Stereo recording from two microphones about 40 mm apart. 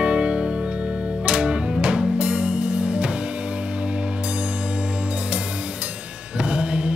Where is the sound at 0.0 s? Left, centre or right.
Right.